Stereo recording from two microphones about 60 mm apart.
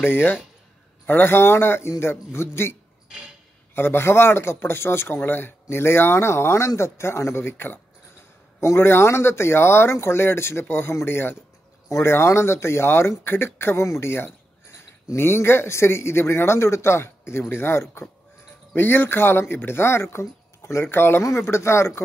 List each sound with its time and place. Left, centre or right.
0.0 s speech: left